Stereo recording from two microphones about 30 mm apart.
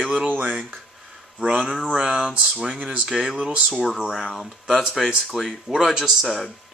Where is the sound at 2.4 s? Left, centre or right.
Centre.